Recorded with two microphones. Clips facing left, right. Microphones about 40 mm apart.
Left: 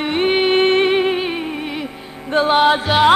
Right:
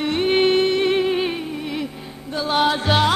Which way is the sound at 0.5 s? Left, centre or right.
Left.